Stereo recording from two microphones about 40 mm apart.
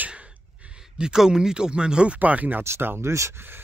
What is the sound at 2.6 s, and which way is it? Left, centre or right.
Speech, right.